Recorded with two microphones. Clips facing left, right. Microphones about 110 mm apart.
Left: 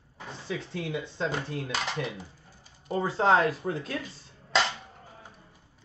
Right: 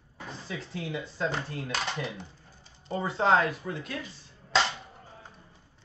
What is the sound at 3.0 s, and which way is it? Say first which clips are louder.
Speech: left 1 dB; 30° left (ahead or behind).